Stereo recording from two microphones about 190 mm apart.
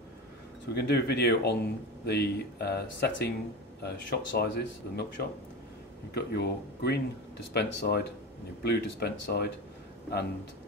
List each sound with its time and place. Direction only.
0.7 s speech: 60° left (ahead or behind)